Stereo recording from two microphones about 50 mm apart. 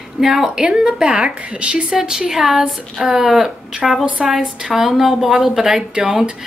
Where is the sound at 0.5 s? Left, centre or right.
Centre.